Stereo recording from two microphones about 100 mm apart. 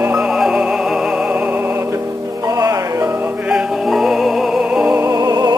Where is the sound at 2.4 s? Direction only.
35° right (ahead or behind).